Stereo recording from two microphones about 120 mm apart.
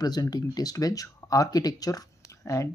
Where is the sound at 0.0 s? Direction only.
35° left (ahead or behind).